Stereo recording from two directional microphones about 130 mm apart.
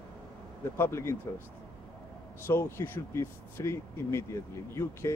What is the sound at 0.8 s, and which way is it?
Speech, 20° left (ahead or behind).